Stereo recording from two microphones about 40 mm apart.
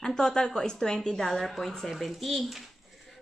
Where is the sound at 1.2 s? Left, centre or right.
Centre.